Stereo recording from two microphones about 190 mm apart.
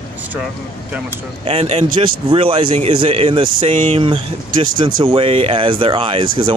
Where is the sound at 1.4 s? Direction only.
30° right (ahead or behind).